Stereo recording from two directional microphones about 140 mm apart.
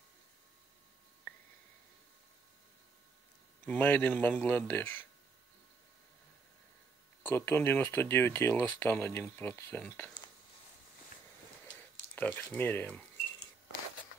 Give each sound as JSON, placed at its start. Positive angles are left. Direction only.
{"t": 3.6, "sound": "speech", "side_deg": 10}
{"t": 7.2, "sound": "speech", "side_deg": 15}
{"t": 12.2, "sound": "speech", "side_deg": 15}